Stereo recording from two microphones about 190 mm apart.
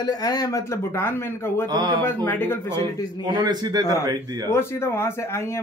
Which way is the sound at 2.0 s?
10° left (ahead or behind).